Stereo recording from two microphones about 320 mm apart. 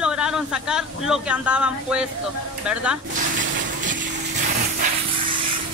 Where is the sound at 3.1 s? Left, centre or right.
Right.